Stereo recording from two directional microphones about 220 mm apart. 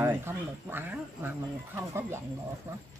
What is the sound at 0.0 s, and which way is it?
Speech, 10° right (ahead or behind).